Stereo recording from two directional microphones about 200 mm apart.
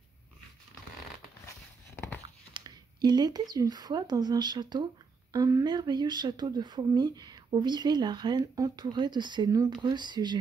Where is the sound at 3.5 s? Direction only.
20° right (ahead or behind).